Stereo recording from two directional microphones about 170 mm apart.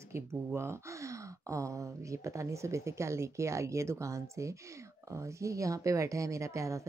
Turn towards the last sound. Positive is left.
turn(degrees=-20)  # may be behind; listen again after turning